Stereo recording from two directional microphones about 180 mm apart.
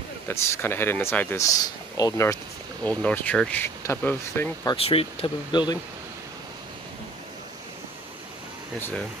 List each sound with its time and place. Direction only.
0.3 s speech: 15° left (ahead or behind)
2.8 s speech: 10° left (ahead or behind)
4.6 s speech: 30° left (ahead or behind)
8.7 s speech: 10° left (ahead or behind)